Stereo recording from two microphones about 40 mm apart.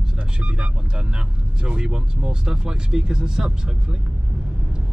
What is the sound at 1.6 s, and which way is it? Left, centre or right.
Speech, right.